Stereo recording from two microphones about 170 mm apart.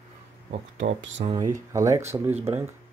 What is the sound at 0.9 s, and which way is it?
Speech, 90° right.